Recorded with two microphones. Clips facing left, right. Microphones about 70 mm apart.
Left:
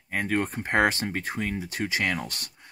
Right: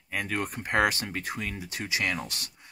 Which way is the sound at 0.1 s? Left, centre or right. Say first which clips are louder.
Left 4 dB; left.